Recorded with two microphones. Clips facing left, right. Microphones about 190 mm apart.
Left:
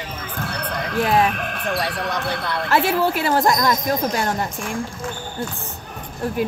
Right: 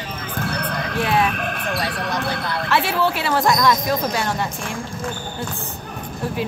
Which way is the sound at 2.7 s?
45° left (ahead or behind).